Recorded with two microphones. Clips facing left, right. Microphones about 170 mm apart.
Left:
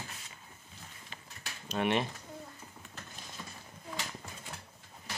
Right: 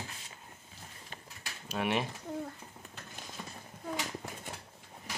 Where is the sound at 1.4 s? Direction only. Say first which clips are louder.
Left 2 dB; 5° right (ahead or behind).